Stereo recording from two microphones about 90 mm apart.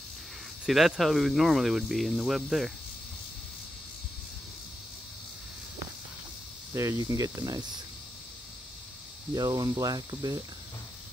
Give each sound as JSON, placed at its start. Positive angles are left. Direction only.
{"t": 0.7, "sound": "speech", "side_deg": 0}
{"t": 6.7, "sound": "speech", "side_deg": -35}
{"t": 9.3, "sound": "speech", "side_deg": -45}